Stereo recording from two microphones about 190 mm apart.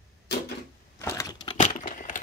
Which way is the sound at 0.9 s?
15° left (ahead or behind).